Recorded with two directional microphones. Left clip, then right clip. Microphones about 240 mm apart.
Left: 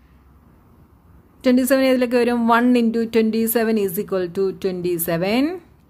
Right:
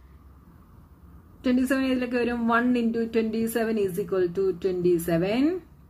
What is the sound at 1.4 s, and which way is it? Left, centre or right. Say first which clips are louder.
A woman's voice: left 9 dB; left.